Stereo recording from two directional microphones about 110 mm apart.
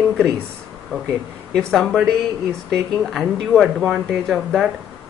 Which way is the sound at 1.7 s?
Centre (ahead or behind).